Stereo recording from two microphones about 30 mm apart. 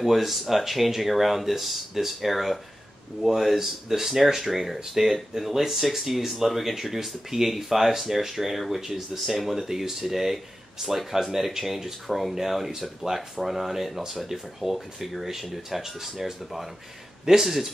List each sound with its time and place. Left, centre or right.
0.0 s speech: centre
3.2 s speech: centre